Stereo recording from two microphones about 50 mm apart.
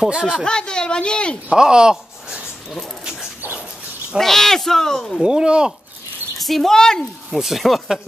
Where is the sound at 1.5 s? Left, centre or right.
Centre.